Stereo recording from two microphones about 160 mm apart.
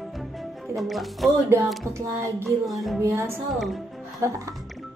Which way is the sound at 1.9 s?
20° right (ahead or behind).